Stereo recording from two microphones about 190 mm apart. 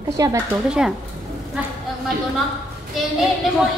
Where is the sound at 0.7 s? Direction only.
5° right (ahead or behind).